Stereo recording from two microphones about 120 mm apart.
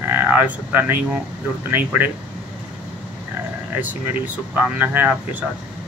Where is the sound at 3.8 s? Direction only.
15° right (ahead or behind).